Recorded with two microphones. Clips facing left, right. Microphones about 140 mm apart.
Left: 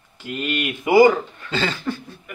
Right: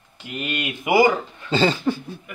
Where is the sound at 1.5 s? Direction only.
30° right (ahead or behind).